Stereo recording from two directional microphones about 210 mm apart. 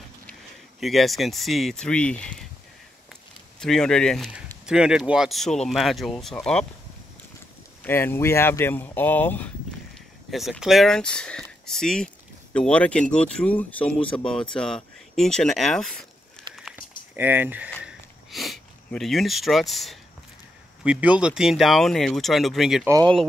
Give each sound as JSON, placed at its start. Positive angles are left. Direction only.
{"t": 0.3, "sound": "speech", "side_deg": 0}
{"t": 3.5, "sound": "speech", "side_deg": 5}
{"t": 7.8, "sound": "speech", "side_deg": 10}
{"t": 17.1, "sound": "speech", "side_deg": -10}
{"t": 17.8, "sound": "a sound", "side_deg": 0}
{"t": 20.8, "sound": "speech", "side_deg": -5}
{"t": 22.8, "sound": "speech", "side_deg": -15}